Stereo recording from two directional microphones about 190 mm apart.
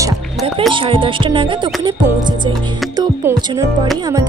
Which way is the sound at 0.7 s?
25° right (ahead or behind).